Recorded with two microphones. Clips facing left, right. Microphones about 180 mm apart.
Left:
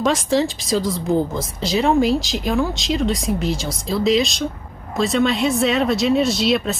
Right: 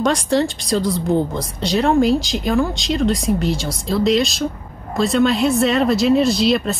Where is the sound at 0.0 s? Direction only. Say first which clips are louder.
Right 1 dB; centre (ahead or behind).